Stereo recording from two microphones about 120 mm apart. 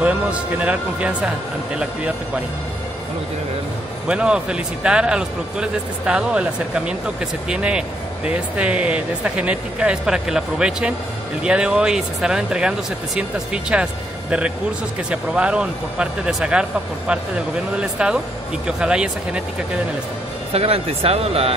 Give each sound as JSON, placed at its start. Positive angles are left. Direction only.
{"t": 0.0, "sound": "speech", "side_deg": -10}
{"t": 4.1, "sound": "speech", "side_deg": -10}
{"t": 15.0, "sound": "speech", "side_deg": -10}
{"t": 17.7, "sound": "speech", "side_deg": -10}
{"t": 20.5, "sound": "speech", "side_deg": -55}